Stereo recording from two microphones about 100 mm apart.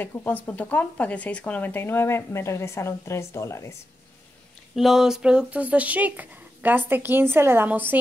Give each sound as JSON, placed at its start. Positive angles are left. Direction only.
{"t": 0.0, "sound": "speech", "side_deg": 20}
{"t": 4.7, "sound": "speech", "side_deg": -5}